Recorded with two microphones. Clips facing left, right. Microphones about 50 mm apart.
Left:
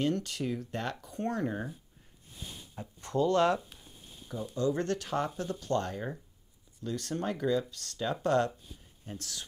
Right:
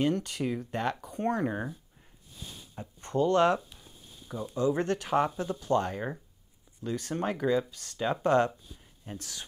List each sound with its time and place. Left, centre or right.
0.0 s speech: centre